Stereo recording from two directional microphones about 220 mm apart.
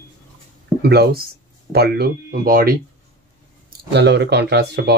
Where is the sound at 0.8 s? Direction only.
45° right (ahead or behind).